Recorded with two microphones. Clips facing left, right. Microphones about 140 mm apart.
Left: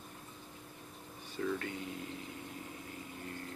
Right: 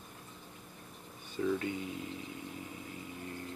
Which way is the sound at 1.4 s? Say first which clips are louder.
Right 4 dB; 15° right (ahead or behind).